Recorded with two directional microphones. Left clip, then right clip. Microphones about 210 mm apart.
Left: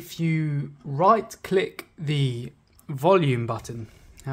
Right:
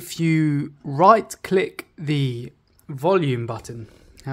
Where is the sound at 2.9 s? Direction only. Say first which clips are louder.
Even; 5° right (ahead or behind).